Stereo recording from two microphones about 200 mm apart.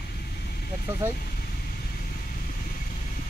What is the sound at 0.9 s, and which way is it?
Speech, 10° right (ahead or behind).